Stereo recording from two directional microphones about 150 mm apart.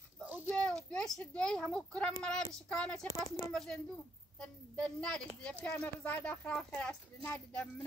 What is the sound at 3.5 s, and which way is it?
A child's voice, 5° left (ahead or behind).